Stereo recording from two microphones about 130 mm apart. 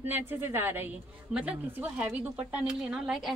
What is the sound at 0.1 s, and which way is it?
Speech, 15° right (ahead or behind).